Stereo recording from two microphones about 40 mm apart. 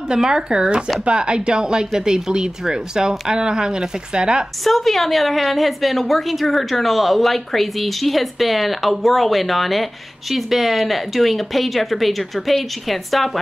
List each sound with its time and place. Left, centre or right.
0.1 s speech: centre
4.6 s a woman's voice: centre